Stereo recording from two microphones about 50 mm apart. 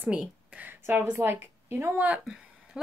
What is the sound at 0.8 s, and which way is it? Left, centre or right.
A woman's voice, right.